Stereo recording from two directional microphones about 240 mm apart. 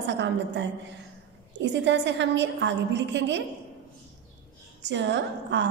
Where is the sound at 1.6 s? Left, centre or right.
Right.